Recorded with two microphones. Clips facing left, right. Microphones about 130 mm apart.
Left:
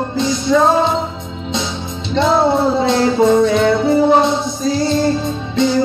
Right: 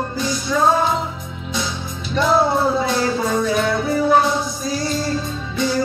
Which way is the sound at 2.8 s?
25° left (ahead or behind).